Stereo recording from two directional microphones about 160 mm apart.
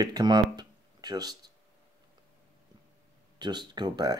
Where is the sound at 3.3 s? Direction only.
25° right (ahead or behind).